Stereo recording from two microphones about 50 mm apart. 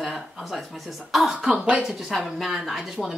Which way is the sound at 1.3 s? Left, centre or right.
Right.